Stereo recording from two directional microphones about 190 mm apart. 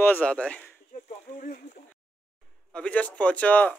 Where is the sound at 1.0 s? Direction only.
45° left (ahead or behind).